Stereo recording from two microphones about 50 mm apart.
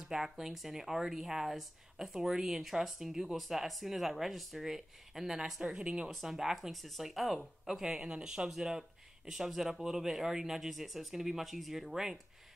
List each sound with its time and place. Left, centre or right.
0.0 s speech: centre
5.6 s speech: centre